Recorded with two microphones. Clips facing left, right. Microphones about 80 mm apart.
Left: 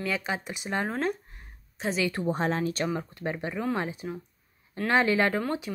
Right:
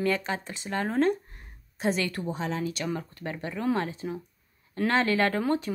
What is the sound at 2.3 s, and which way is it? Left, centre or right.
Speech, left.